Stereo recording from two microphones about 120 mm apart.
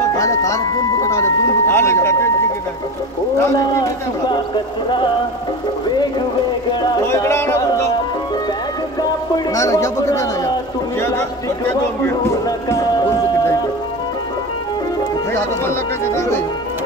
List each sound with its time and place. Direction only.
0.2 s speech: 25° left (ahead or behind)
7.0 s speech: 25° left (ahead or behind)
9.5 s speech: 25° left (ahead or behind)
12.4 s speech: 25° left (ahead or behind)